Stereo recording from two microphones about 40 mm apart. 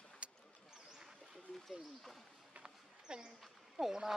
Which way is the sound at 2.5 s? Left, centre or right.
Right.